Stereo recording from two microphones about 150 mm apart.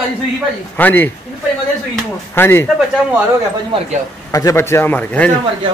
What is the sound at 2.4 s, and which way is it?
Speech, 15° left (ahead or behind).